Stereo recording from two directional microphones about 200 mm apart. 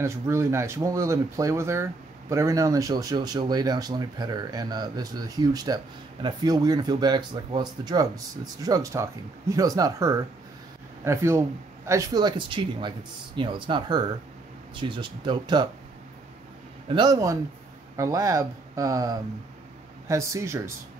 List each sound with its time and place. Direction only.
0.0 s speech: 15° right (ahead or behind)
16.9 s speech: 20° right (ahead or behind)